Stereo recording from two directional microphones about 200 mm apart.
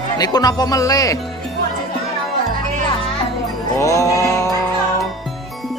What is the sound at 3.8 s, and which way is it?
Music, 15° left (ahead or behind).